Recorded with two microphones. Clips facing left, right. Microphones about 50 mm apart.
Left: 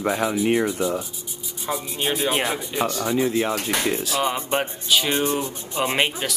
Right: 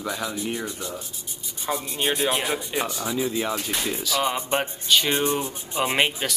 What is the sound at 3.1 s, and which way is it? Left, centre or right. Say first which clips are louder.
Speech: left 3 dB; left.